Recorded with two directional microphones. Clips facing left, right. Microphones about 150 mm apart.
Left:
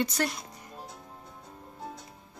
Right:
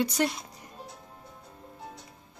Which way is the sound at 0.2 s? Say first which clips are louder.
Right 5 dB; 20° right (ahead or behind).